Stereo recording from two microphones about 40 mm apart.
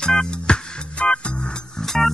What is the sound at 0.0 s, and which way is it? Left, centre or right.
Music, left.